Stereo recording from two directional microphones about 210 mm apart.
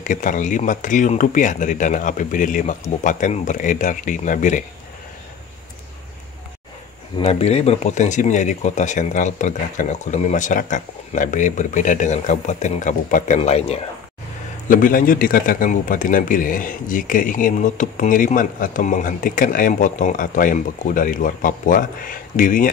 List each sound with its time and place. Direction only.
0.0 s a man's voice: 35° left (ahead or behind)
7.2 s a man's voice: 30° left (ahead or behind)
14.7 s a man's voice: 40° left (ahead or behind)